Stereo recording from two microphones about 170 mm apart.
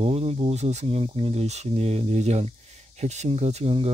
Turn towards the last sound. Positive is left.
turn(degrees=-35)  # may be behind; listen again after turning